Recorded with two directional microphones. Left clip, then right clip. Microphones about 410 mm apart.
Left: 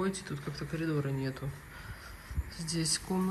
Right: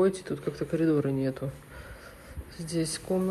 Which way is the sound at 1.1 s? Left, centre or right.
Centre.